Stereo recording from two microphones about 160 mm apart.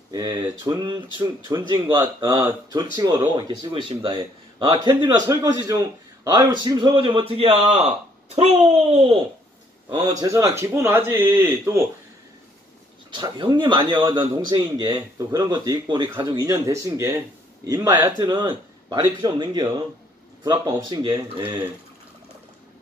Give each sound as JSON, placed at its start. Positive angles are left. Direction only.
{"t": 0.1, "sound": "a man's voice", "side_deg": -25}
{"t": 9.9, "sound": "speech", "side_deg": -20}
{"t": 13.1, "sound": "speech", "side_deg": -30}